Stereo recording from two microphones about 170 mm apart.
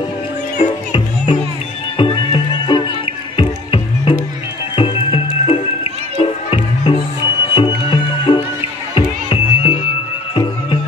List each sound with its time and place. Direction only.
0.6 s music: 25° left (ahead or behind)